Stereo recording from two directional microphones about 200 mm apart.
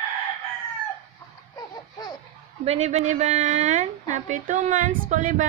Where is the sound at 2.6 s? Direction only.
30° right (ahead or behind).